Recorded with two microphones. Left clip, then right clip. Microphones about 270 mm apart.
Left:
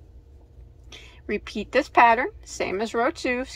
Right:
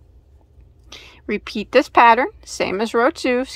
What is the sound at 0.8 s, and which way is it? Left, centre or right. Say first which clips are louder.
A woman's voice: right 5 dB; centre.